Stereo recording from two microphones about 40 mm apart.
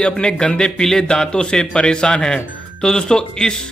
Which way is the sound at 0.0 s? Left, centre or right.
Left.